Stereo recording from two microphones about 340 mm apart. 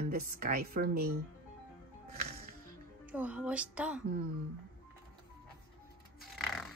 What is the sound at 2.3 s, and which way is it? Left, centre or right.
Music, right.